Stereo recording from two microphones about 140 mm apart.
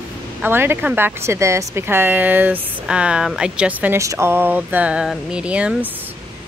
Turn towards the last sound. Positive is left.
turn(degrees=-10)  # may be behind; listen again after turning